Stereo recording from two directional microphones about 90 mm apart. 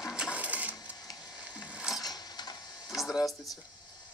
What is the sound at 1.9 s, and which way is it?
Mechanisms, 50° left (ahead or behind).